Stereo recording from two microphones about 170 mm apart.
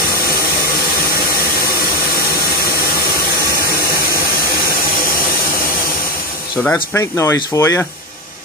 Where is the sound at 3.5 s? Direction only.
60° left (ahead or behind).